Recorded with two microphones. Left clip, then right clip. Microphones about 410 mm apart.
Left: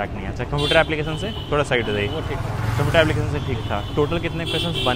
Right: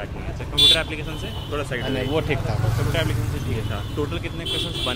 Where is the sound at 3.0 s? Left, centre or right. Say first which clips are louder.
Left 12 dB; left.